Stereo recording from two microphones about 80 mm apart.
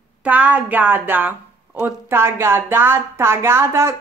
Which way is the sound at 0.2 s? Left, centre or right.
Right.